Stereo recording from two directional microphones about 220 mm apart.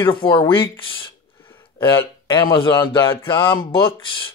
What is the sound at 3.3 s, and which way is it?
Speech, 20° left (ahead or behind).